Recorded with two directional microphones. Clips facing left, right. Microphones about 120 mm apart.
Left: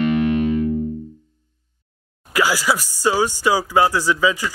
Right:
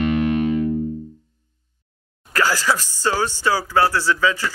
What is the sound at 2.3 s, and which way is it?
Speech, 10° left (ahead or behind).